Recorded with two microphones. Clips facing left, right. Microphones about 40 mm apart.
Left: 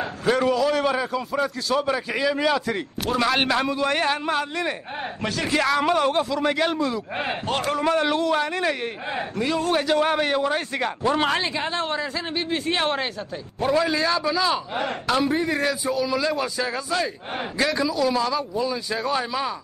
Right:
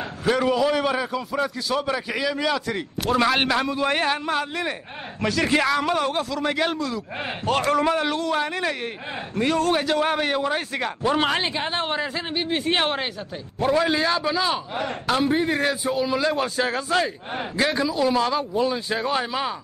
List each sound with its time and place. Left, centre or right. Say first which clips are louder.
0.2 s a man's voice: even; centre
0.5 s a man's voice: even; centre
3.1 s a man's voice: right 1 dB; centre
5.8 s a man's voice: left 2 dB; centre
7.8 s a man's voice: left 1 dB; centre
9.4 s speech: right 3 dB; right
9.7 s a man's voice: left 1 dB; centre
11.4 s a man's voice: even; right
13.8 s a man's voice: right 1 dB; right
15.0 s speech: right 1 dB; centre
15.3 s a man's voice: right 1 dB; right
16.5 s speech: right 3 dB; right
17.9 s a man's voice: right 1 dB; right
18.9 s a man's voice: even; right